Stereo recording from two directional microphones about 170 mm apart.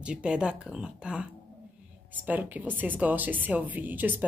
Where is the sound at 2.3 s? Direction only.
10° right (ahead or behind).